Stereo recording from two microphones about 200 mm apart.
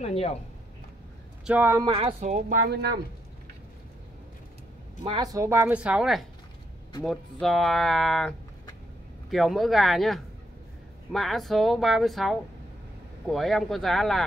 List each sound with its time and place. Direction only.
0.0 s speech: 30° left (ahead or behind)
1.4 s speech: 10° right (ahead or behind)
2.0 s speech: 30° right (ahead or behind); by 3.0 s 55° right (ahead or behind)
5.0 s speech: 20° right (ahead or behind); by 14.2 s centre (ahead or behind)